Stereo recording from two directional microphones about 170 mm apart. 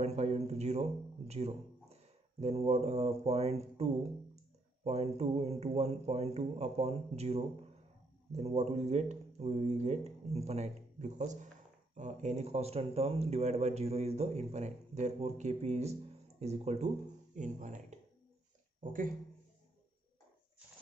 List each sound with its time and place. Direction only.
0.0 s speech: 40° right (ahead or behind)